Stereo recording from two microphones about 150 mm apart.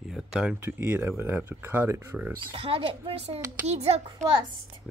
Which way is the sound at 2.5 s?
40° right (ahead or behind).